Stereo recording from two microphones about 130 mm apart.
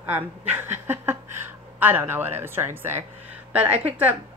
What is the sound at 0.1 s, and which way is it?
Speech, 15° right (ahead or behind).